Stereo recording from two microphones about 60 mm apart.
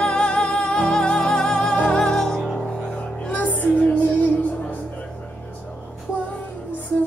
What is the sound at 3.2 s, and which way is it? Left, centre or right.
Music, left.